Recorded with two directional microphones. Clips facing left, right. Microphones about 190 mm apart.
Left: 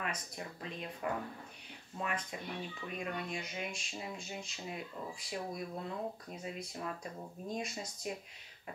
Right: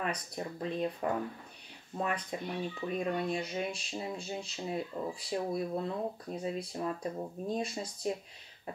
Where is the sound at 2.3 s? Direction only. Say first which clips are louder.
Right 6 dB; 35° right (ahead or behind).